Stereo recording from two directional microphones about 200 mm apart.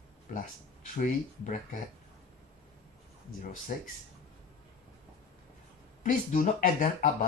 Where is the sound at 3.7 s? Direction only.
45° left (ahead or behind).